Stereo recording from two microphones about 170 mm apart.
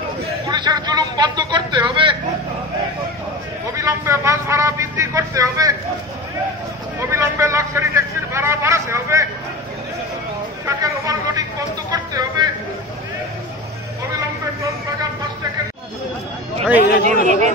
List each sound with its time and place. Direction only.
0.5 s speech: 25° right (ahead or behind)
3.7 s a man's voice: 20° right (ahead or behind)
7.0 s a man's voice: 15° right (ahead or behind)
10.8 s speech: 20° right (ahead or behind)
17.0 s speech: 45° right (ahead or behind)